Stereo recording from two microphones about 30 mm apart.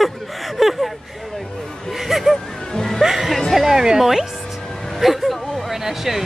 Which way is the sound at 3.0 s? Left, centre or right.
Centre.